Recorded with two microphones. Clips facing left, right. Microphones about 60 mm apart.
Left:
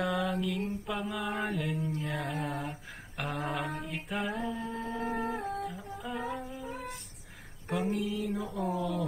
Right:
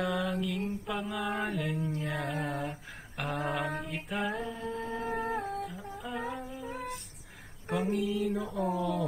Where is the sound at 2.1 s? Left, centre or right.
Right.